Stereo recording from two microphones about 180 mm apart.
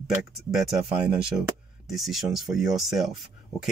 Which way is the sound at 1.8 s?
Centre (ahead or behind).